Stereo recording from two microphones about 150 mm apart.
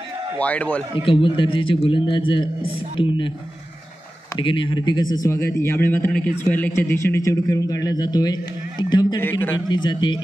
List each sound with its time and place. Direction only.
0.4 s a man's voice: 10° left (ahead or behind)
1.0 s a man's voice: 35° left (ahead or behind)
4.4 s a man's voice: 35° left (ahead or behind)
9.2 s a man's voice: 15° left (ahead or behind)
9.7 s a man's voice: 30° left (ahead or behind)